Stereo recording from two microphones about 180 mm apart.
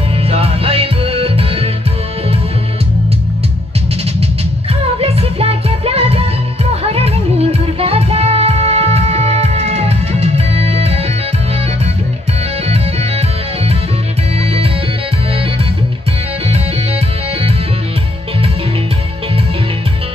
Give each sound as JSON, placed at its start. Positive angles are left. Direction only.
{"t": 0.3, "sound": "music", "side_deg": -35}
{"t": 4.9, "sound": "music", "side_deg": -35}
{"t": 12.6, "sound": "music", "side_deg": -35}
{"t": 14.4, "sound": "music", "side_deg": -35}